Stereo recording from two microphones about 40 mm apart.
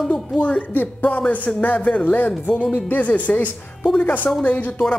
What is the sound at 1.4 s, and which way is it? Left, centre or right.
Speech, left.